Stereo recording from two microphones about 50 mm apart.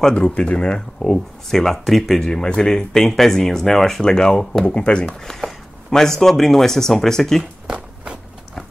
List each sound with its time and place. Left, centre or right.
0.1 s speech: centre
5.2 s speech: centre
7.7 s walk: centre